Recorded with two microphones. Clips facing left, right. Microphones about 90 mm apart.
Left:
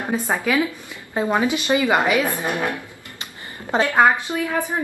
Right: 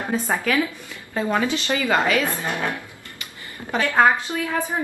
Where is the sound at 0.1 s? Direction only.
15° left (ahead or behind).